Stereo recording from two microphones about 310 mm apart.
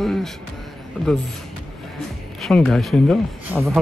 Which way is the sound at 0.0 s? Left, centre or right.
Centre.